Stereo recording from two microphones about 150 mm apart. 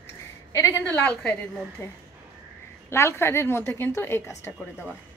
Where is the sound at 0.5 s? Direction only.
20° left (ahead or behind).